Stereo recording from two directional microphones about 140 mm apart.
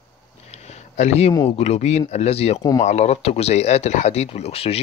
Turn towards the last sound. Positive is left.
turn(degrees=45)  # may be behind; listen again after turning